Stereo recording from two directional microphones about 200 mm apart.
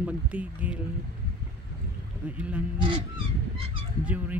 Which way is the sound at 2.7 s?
25° right (ahead or behind).